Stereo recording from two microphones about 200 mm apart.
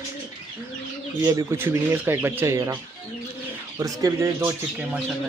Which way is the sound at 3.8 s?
15° right (ahead or behind).